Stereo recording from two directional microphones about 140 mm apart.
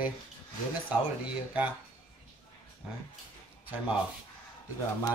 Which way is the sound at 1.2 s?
10° right (ahead or behind).